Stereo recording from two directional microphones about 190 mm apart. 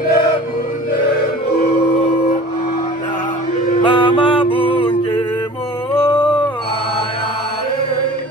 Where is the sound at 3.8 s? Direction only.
25° left (ahead or behind).